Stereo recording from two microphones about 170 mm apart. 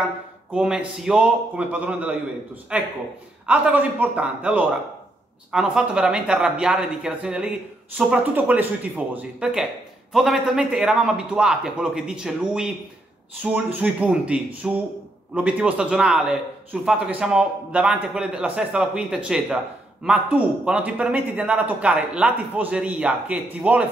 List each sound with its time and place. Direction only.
0.5 s a man's voice: 5° right (ahead or behind)
13.7 s a man's voice: 5° right (ahead or behind)